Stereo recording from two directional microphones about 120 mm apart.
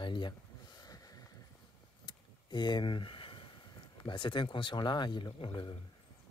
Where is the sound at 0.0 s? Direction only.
40° left (ahead or behind).